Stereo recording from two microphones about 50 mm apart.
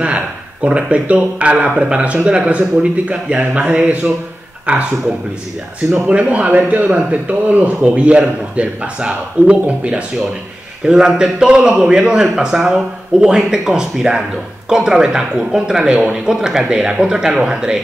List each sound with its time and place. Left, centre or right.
0.7 s a man's voice: right
6.0 s a man's voice: right
10.9 s speech: centre